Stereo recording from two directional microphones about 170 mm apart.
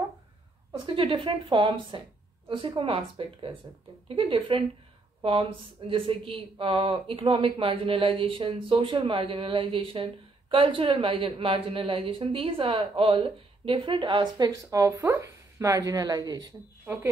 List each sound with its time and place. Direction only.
0.8 s speech: 30° right (ahead or behind); by 17.1 s 15° right (ahead or behind)